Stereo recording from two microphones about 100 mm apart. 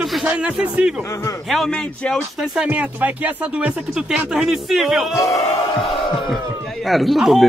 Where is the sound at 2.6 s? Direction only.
10° right (ahead or behind).